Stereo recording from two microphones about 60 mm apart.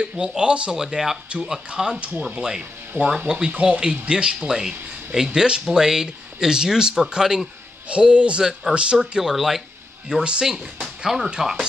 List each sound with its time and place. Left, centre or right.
0.0 s speech: centre
10.1 s speech: centre